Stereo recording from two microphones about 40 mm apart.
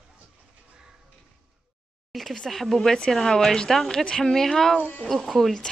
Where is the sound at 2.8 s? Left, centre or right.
Centre.